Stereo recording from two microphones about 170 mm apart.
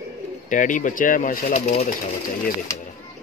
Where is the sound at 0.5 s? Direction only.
50° left (ahead or behind).